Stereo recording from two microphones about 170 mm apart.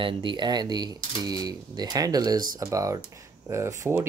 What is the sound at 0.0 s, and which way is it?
Speech, 30° right (ahead or behind).